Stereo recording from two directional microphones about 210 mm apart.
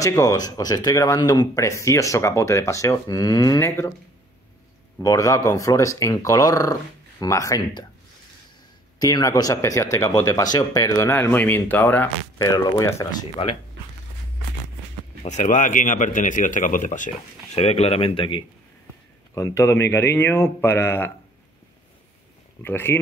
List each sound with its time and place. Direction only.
0.0 s speech: 15° left (ahead or behind)
5.0 s speech: 15° left (ahead or behind)
9.0 s speech: 15° left (ahead or behind)
15.2 s a man's voice: 35° left (ahead or behind)
19.3 s speech: 15° left (ahead or behind)
22.6 s speech: 10° left (ahead or behind)